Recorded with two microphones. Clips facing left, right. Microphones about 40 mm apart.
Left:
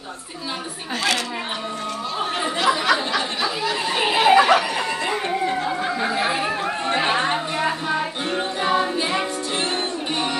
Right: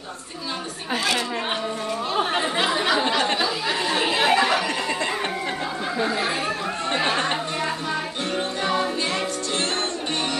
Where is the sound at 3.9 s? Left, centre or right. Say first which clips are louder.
Left 5 dB; centre.